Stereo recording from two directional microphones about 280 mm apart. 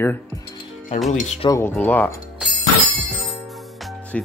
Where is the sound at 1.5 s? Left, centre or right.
Centre.